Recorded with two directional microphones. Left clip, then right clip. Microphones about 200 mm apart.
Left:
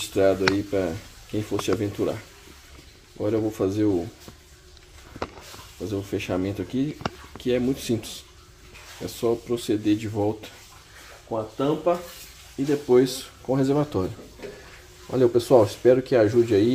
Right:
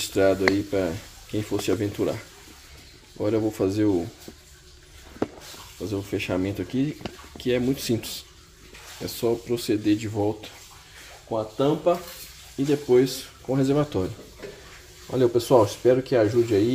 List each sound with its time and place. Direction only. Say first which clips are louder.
0.1 s speech: even; 5° right (ahead or behind)
3.2 s speech: even; 5° right (ahead or behind)
5.8 s speech: even; centre (ahead or behind)
11.5 s speech: right 1 dB; 15° right (ahead or behind)
12.6 s speech: even; centre (ahead or behind)
13.0 s speech: left 1 dB; 10° left (ahead or behind)